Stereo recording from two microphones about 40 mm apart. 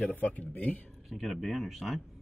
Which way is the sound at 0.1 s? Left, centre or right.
Left.